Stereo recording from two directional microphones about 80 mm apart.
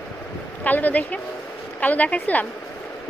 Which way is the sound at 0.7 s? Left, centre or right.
Left.